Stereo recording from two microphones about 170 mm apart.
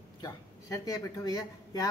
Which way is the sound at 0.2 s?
20° left (ahead or behind).